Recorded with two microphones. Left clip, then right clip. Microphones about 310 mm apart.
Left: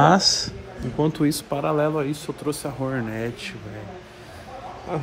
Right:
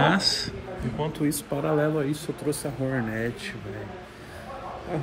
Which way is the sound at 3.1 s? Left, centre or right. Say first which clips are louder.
Left 1 dB; centre.